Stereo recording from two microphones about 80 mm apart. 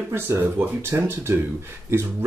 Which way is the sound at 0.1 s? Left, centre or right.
Right.